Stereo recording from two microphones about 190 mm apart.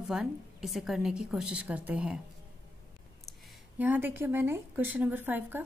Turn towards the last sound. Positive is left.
turn(degrees=-10)  # may be behind; listen again after turning